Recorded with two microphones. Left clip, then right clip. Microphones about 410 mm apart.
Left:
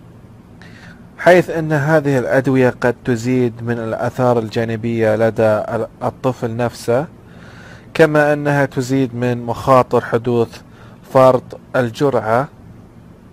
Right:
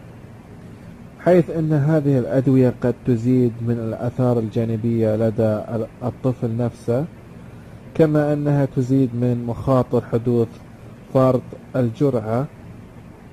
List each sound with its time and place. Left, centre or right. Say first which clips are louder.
1.2 s a man's voice: left 6 dB; left